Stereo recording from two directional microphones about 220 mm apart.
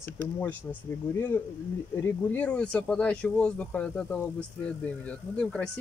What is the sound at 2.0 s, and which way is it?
Speech, 5° left (ahead or behind).